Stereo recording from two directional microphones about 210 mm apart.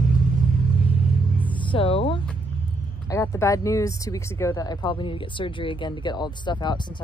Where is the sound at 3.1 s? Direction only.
15° left (ahead or behind).